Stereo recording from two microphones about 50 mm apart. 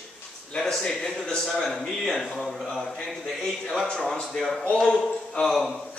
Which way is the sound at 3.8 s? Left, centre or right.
Centre.